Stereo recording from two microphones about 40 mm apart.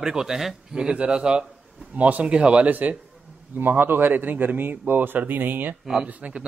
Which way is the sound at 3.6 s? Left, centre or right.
Right.